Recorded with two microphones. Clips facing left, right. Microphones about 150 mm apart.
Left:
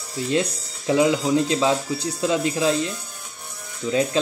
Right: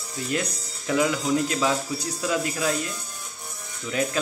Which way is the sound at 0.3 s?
25° left (ahead or behind).